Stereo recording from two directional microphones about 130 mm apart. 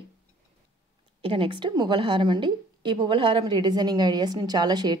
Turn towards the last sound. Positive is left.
turn(degrees=-30)  # may be behind; listen again after turning